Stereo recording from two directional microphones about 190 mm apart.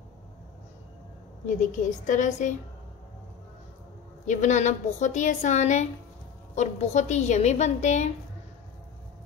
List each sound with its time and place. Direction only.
1.6 s a woman's voice: 40° left (ahead or behind)
4.3 s a woman's voice: 40° left (ahead or behind)